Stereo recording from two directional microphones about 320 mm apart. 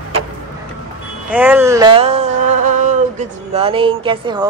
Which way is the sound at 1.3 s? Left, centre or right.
Centre.